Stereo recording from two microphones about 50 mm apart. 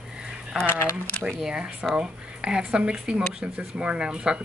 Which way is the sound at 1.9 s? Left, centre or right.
Centre.